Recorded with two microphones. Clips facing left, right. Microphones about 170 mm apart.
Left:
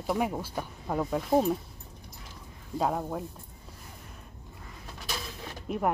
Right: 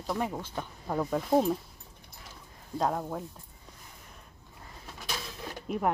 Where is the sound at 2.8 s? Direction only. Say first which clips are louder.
Left 1 dB; 5° left (ahead or behind).